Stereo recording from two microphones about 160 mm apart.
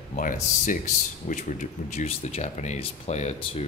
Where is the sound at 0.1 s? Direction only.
55° left (ahead or behind).